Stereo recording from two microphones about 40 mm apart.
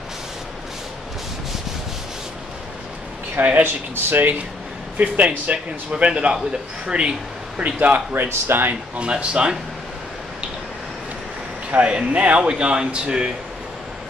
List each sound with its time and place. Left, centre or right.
3.3 s speech: right
3.6 s speech: right
5.0 s speech: right
8.1 s speech: right
8.9 s speech: right
11.7 s speech: right